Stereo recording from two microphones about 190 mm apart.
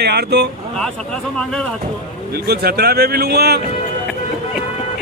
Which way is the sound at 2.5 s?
55° right (ahead or behind).